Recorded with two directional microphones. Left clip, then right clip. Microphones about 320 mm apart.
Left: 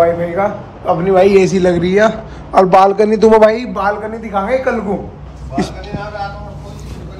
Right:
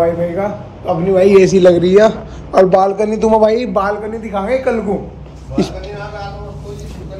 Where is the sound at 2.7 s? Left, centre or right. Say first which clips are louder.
Left 3 dB; left.